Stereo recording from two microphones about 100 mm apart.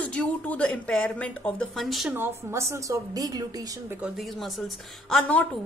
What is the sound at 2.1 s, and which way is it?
A woman's voice, 25° right (ahead or behind).